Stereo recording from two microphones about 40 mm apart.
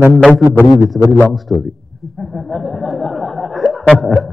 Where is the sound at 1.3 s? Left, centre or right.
Centre.